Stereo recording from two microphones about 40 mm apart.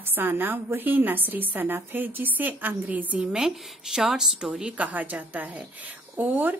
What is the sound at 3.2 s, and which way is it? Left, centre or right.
A woman's voice, centre.